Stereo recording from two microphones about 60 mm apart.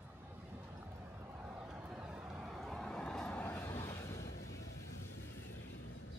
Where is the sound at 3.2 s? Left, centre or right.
Left.